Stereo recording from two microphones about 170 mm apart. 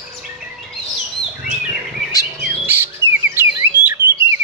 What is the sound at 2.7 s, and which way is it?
Bird, 15° right (ahead or behind).